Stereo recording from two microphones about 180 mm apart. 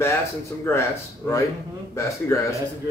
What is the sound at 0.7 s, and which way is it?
A man's voice, 15° left (ahead or behind).